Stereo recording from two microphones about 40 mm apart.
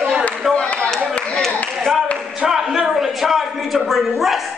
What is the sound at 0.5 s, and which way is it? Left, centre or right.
Speech, left.